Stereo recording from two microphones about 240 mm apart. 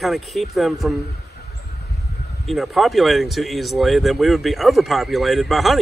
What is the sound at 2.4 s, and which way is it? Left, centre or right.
Speech, centre.